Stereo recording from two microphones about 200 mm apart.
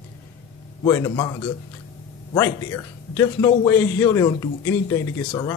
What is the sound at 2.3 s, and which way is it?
A man's voice, 15° left (ahead or behind).